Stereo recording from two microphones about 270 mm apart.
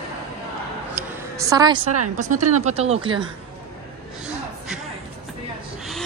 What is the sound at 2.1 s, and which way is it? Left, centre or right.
Speech, right.